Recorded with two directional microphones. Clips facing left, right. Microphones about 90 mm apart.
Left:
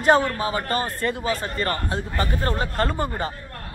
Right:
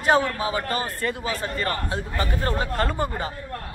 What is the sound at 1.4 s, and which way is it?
Speech, 10° right (ahead or behind).